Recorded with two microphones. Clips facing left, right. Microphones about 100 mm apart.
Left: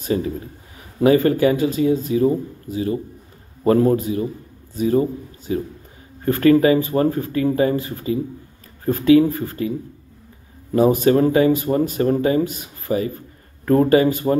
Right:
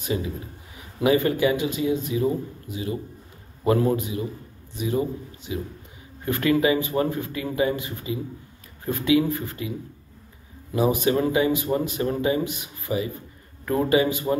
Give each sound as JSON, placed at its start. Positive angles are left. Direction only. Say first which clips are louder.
{"t": 0.0, "sound": "a man's voice", "louder": "left 6 dB", "side_deg": 40}